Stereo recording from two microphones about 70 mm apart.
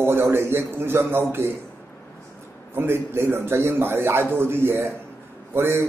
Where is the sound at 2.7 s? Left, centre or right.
Right.